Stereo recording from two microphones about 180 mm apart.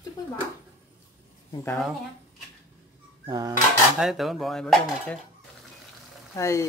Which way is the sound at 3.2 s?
20° right (ahead or behind).